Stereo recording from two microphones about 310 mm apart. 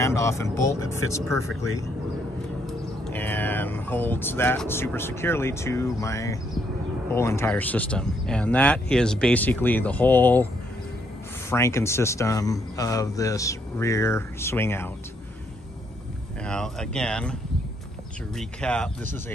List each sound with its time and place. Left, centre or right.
0.0 s speech: centre
0.6 s speech: right
0.8 s speech: centre
2.6 s speech: centre
11.5 s speech: centre
16.4 s speech: centre